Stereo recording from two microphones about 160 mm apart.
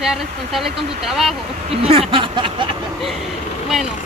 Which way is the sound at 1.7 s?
40° right (ahead or behind).